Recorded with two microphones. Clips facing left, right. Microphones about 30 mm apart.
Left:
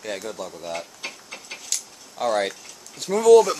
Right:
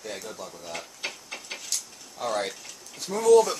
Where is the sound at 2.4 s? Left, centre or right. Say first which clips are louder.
Left 5 dB; left.